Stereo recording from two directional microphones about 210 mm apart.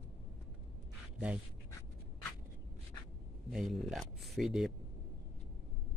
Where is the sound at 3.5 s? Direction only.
Centre (ahead or behind).